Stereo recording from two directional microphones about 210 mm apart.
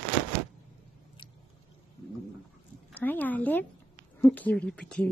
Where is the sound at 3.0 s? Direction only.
10° left (ahead or behind).